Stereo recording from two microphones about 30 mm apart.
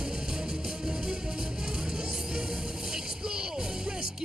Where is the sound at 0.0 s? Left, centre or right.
Right.